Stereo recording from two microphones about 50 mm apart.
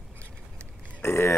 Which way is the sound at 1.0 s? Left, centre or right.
Left.